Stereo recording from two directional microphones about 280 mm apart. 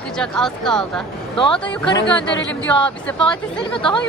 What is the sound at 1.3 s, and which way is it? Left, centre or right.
Speech, centre.